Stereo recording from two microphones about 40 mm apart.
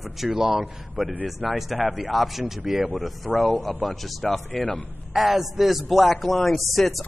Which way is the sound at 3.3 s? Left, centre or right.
Centre.